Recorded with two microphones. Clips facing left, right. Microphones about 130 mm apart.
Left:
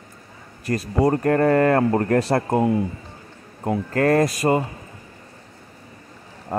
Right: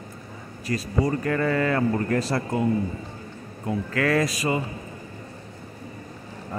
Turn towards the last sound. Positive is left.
turn(degrees=50)  # may be behind; listen again after turning